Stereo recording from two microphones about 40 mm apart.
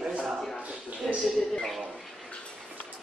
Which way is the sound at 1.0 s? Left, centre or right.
Centre.